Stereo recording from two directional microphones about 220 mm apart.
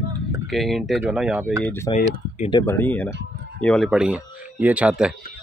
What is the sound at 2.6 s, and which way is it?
Speech, 10° left (ahead or behind).